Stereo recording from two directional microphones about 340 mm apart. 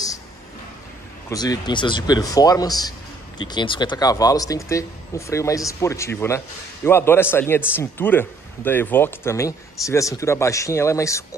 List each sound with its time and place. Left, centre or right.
1.3 s speech: centre